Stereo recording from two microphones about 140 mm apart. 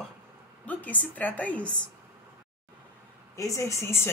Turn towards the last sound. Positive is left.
turn(degrees=20)  # may be behind; listen again after turning